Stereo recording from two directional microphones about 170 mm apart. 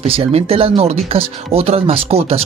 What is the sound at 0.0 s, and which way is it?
Speech, 35° right (ahead or behind).